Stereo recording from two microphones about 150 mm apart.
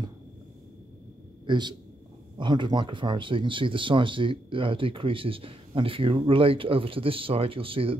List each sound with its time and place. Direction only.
1.4 s a man's voice: 30° right (ahead or behind)